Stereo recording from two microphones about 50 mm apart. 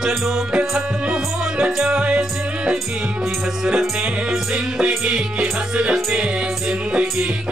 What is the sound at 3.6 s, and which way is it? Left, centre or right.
Music, centre.